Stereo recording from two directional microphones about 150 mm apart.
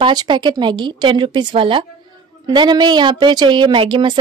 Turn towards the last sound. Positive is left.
turn(degrees=-35)  # may be behind; listen again after turning